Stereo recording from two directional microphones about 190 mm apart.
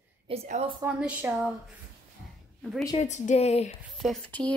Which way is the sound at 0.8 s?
5° right (ahead or behind).